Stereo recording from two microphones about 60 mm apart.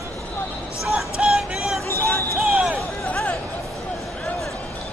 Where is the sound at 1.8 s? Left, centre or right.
Left.